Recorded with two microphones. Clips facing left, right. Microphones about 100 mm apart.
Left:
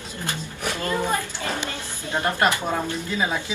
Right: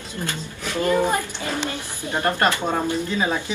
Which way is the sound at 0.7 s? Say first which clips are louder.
Right 6 dB; 20° right (ahead or behind).